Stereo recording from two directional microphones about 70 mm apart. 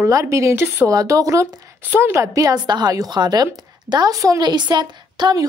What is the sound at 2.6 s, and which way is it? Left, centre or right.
Speech, right.